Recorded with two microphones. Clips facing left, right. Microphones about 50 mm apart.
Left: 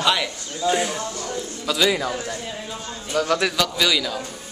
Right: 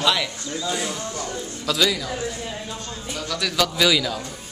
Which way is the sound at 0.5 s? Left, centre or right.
Left.